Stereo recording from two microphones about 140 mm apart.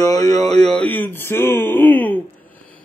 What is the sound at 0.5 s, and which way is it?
Speech, 5° left (ahead or behind).